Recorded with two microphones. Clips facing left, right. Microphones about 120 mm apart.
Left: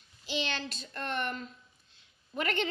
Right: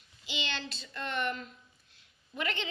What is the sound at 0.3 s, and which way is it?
A child's voice, 45° left (ahead or behind).